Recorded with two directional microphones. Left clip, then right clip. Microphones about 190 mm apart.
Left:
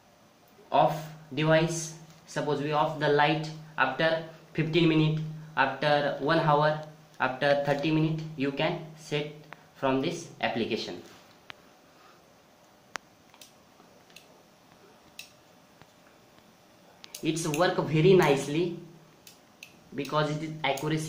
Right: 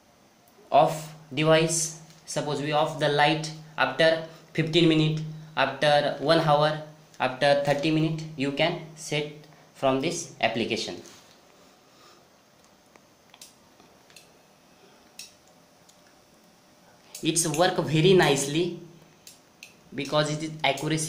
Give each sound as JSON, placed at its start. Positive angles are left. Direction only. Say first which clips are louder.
{"t": 1.3, "sound": "speech", "louder": "right 3 dB", "side_deg": -25}
{"t": 17.2, "sound": "speech", "louder": "right 3 dB", "side_deg": -30}
{"t": 20.0, "sound": "speech", "louder": "right 3 dB", "side_deg": -25}